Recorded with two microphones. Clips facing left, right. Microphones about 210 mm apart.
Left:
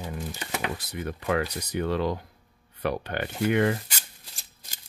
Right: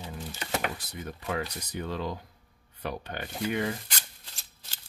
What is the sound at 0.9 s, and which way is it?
Speech, 75° left (ahead or behind).